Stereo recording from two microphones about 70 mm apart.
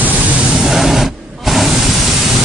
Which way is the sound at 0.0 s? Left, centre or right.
Right.